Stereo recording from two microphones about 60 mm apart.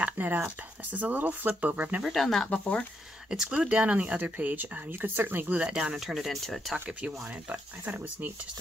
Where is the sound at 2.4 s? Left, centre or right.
Left.